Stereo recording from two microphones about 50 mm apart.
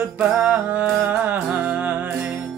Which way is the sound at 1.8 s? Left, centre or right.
Right.